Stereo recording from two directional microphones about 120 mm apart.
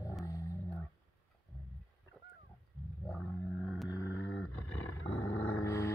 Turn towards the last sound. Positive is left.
turn(degrees=20)  # may be behind; listen again after turning